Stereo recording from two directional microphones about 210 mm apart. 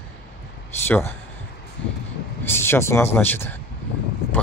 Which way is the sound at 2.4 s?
10° left (ahead or behind).